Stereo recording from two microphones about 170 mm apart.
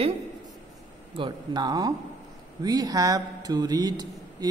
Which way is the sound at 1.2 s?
25° right (ahead or behind).